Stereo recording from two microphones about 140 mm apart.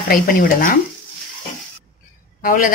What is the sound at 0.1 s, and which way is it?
Speech, 90° left.